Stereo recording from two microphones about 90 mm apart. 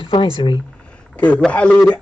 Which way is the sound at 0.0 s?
75° left (ahead or behind).